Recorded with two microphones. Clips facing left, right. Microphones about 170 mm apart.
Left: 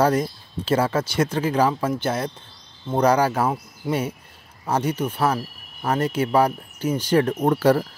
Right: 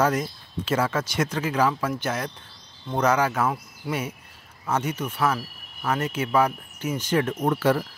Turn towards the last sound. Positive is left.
turn(degrees=40)  # may be behind; listen again after turning